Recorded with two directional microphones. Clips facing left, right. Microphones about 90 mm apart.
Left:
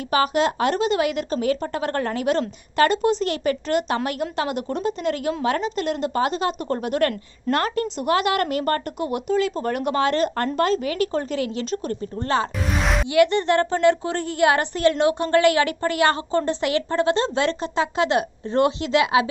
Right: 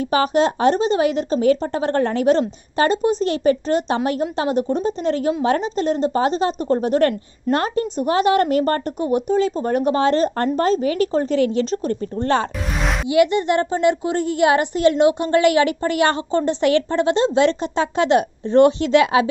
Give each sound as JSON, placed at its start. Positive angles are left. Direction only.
{"t": 0.1, "sound": "a woman's voice", "side_deg": -35}
{"t": 7.5, "sound": "a woman's voice", "side_deg": -20}
{"t": 12.8, "sound": "music", "side_deg": 0}
{"t": 13.1, "sound": "a woman's voice", "side_deg": -15}